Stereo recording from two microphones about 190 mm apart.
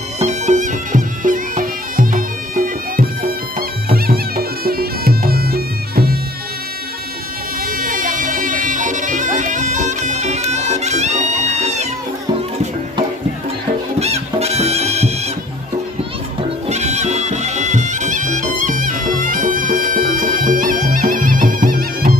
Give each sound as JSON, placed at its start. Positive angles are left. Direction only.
{"t": 0.2, "sound": "bagpipes", "side_deg": -40}
{"t": 7.6, "sound": "music", "side_deg": -50}
{"t": 13.9, "sound": "music", "side_deg": -35}
{"t": 16.6, "sound": "music", "side_deg": -35}